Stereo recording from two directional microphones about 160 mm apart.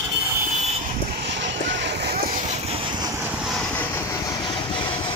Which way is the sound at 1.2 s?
90° right.